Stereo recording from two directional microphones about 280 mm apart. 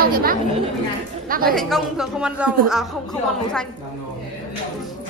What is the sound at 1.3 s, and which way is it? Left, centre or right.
Speech, right.